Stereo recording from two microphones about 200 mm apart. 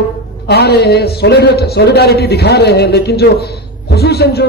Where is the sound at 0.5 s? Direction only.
55° left (ahead or behind).